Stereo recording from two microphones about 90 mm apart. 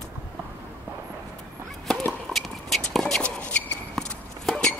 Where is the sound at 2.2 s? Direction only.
Centre (ahead or behind).